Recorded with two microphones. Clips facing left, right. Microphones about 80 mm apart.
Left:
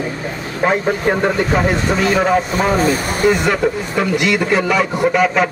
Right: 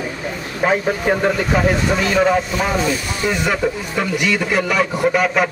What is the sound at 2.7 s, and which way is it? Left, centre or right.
Speech, left.